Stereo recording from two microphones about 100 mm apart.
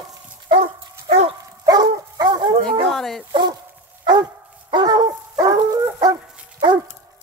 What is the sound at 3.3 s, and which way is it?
Dog, 45° right (ahead or behind).